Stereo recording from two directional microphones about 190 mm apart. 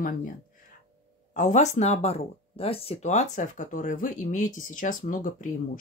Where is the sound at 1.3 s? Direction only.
40° left (ahead or behind).